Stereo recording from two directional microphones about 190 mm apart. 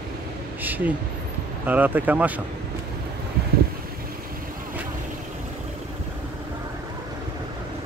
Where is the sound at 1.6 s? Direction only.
10° right (ahead or behind).